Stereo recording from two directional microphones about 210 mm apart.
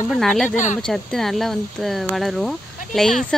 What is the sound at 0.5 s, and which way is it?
Speech, 35° left (ahead or behind).